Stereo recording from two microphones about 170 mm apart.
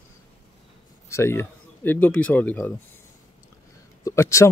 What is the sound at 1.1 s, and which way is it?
Speech, 15° left (ahead or behind).